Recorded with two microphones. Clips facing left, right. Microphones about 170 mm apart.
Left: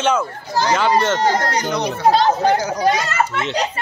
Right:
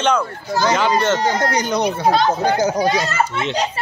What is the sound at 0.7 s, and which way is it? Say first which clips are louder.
Speech: even; 10° right (ahead or behind).